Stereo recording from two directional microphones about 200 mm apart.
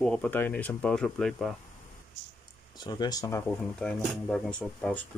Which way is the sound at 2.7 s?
20° left (ahead or behind).